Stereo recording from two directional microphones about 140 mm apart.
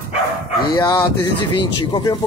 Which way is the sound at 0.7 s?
30° left (ahead or behind).